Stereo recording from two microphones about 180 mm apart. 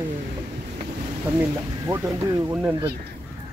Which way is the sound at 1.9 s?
20° right (ahead or behind).